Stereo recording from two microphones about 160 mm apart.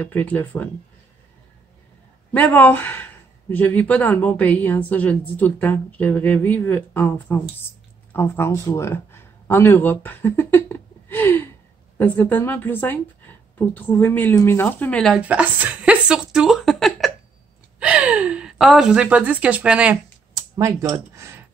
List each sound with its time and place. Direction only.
0.0 s speech: 10° left (ahead or behind)
2.3 s speech: 10° left (ahead or behind)
15.1 s a woman's voice: 10° right (ahead or behind)
20.3 s a sound: 25° right (ahead or behind)